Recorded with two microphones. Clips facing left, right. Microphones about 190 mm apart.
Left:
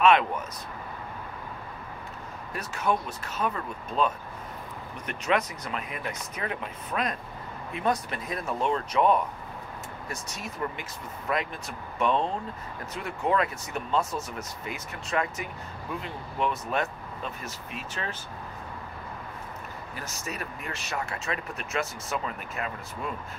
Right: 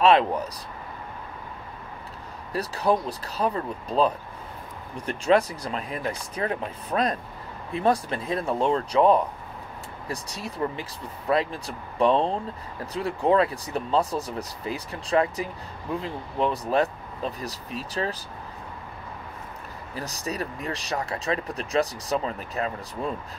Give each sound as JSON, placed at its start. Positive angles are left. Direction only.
{"t": 0.0, "sound": "speech", "side_deg": -35}
{"t": 2.5, "sound": "speech", "side_deg": -35}
{"t": 20.0, "sound": "speech", "side_deg": -35}